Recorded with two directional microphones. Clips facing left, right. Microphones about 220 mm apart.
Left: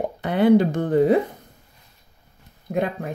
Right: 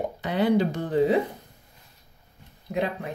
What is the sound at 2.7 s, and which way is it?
Speech, 50° left (ahead or behind).